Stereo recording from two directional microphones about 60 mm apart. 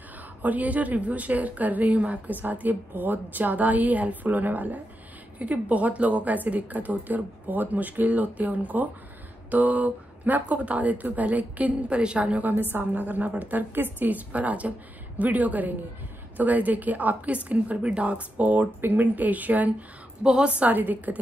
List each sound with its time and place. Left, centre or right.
0.4 s a woman's voice: right
20.2 s a woman's voice: centre